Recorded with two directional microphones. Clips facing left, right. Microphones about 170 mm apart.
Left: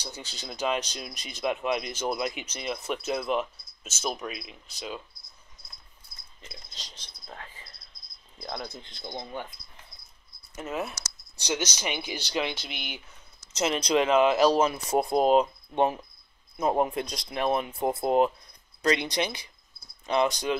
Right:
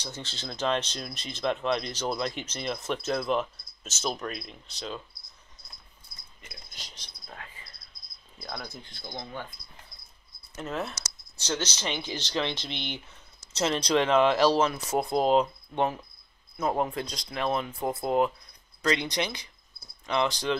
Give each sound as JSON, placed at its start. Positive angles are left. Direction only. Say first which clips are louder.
{"t": 0.0, "sound": "speech", "louder": "right 2 dB", "side_deg": 10}
{"t": 8.4, "sound": "speech", "louder": "left 3 dB", "side_deg": 20}
{"t": 10.5, "sound": "speech", "louder": "left 1 dB", "side_deg": 5}
{"t": 14.9, "sound": "speech", "louder": "left 2 dB", "side_deg": 20}
{"t": 15.1, "sound": "speech", "louder": "left 1 dB", "side_deg": 10}